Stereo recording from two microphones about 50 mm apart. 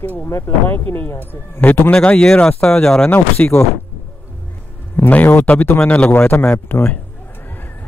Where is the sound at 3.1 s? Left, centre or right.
Left.